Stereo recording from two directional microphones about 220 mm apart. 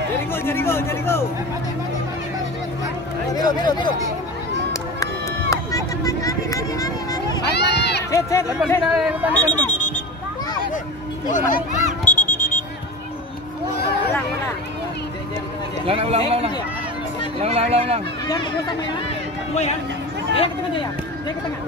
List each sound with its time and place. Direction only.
0.3 s speech: 10° left (ahead or behind)
3.3 s speech: 20° left (ahead or behind)
5.5 s a sound: 15° left (ahead or behind)
7.5 s speech: 50° left (ahead or behind)
8.1 s speech: 15° left (ahead or behind)
8.8 s speech: 5° right (ahead or behind)
11.3 s a sound: 35° left (ahead or behind)
15.9 s speech: 25° right (ahead or behind)
18.2 s speech: 15° left (ahead or behind)